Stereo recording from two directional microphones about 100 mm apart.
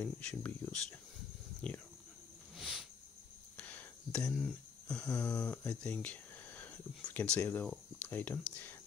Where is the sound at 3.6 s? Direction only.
15° left (ahead or behind).